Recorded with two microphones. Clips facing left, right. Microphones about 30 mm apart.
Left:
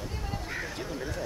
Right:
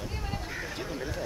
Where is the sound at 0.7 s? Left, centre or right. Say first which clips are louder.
Even; centre.